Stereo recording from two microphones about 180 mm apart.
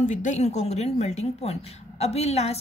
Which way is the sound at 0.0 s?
45° left (ahead or behind).